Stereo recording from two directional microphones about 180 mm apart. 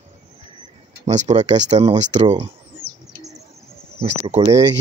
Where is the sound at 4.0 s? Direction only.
35° right (ahead or behind).